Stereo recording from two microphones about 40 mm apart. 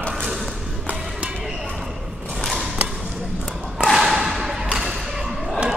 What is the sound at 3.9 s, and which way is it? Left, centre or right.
Thump, centre.